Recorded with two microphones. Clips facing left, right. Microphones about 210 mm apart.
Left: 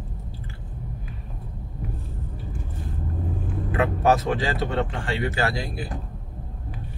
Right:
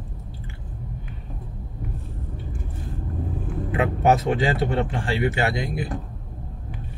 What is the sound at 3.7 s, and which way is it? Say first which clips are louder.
Speech: right 1 dB; 25° right (ahead or behind).